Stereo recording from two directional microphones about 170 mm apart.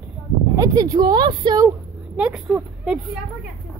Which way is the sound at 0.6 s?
20° right (ahead or behind).